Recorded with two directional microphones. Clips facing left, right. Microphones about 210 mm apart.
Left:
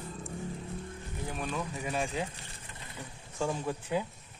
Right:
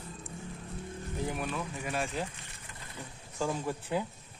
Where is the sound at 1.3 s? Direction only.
5° right (ahead or behind).